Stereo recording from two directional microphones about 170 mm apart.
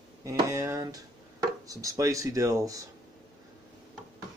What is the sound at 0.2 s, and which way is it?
Speech, 20° right (ahead or behind).